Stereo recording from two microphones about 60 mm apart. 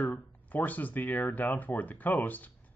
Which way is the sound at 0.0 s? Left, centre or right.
Left.